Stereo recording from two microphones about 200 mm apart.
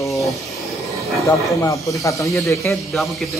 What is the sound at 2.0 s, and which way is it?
Speech, 15° left (ahead or behind).